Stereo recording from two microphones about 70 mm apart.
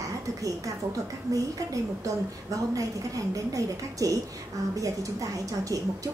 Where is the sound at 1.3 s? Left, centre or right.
Right.